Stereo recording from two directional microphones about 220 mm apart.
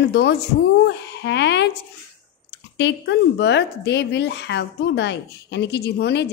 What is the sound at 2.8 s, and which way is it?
Speech, 50° left (ahead or behind).